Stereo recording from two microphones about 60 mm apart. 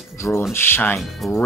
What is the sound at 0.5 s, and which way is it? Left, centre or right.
Speech, left.